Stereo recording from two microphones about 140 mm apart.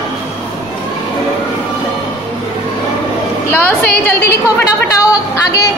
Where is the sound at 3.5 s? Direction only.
15° left (ahead or behind).